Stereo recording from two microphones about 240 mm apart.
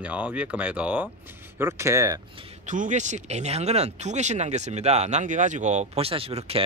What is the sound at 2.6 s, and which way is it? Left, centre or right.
Speech, right.